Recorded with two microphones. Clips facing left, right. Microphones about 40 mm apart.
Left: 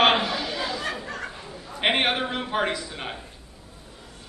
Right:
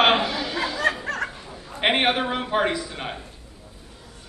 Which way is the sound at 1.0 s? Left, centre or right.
Right.